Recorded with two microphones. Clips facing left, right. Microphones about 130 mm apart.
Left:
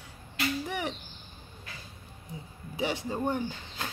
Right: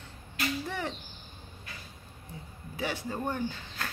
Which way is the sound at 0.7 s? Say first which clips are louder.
Left 1 dB; 15° left (ahead or behind).